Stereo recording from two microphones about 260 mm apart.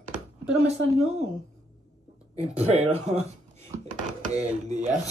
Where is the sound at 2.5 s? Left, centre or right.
Right.